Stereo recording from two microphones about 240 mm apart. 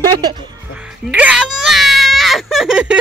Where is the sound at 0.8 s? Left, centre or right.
Centre.